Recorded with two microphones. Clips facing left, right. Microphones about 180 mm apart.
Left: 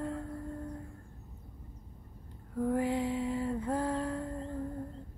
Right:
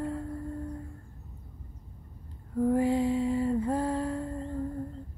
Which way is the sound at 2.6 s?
10° right (ahead or behind).